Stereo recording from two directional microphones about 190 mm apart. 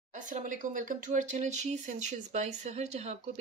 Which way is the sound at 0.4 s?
45° right (ahead or behind).